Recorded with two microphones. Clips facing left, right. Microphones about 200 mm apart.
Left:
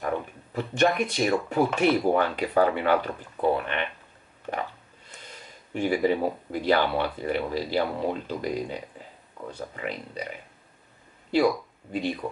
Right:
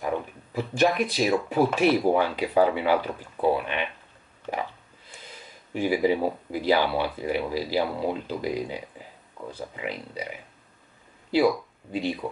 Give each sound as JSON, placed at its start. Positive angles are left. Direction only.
{"t": 0.0, "sound": "speech", "side_deg": -5}
{"t": 4.5, "sound": "a sound", "side_deg": -5}
{"t": 5.8, "sound": "speech", "side_deg": -5}